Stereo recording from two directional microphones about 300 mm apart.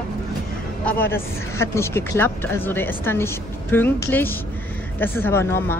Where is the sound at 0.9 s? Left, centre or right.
Centre.